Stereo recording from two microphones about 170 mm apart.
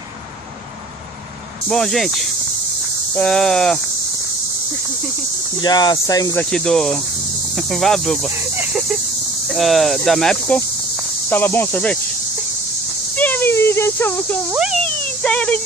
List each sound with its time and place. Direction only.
1.7 s snake: centre (ahead or behind)
3.2 s snake: 5° left (ahead or behind)
5.6 s speech: 25° left (ahead or behind)
6.5 s snake: 5° left (ahead or behind)
8.4 s speech: 10° right (ahead or behind)
9.5 s snake: centre (ahead or behind)
11.2 s speech: 10° left (ahead or behind)
13.1 s a sound: 10° left (ahead or behind)
14.5 s snake: 5° right (ahead or behind)
14.8 s speech: 5° left (ahead or behind)